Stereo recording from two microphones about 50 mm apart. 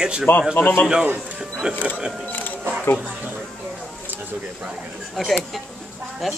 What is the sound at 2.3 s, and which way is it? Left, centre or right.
Single-lens reflex camera, left.